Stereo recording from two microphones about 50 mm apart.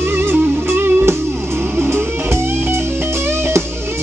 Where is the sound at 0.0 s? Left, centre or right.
Right.